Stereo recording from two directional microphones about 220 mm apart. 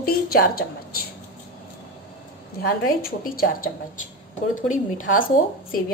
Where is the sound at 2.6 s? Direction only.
40° left (ahead or behind).